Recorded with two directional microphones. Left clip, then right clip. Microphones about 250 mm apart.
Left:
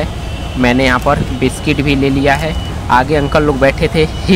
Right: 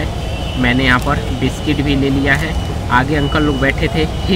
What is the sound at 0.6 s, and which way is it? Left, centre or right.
Speech, left.